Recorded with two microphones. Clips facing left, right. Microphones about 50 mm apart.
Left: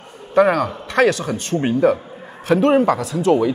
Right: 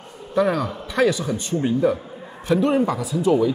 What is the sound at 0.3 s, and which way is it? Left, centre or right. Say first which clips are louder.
Speech: left 5 dB; left.